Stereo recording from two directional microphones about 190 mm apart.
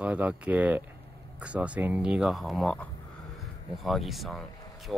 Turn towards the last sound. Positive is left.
turn(degrees=0)  # may be behind; listen again after turning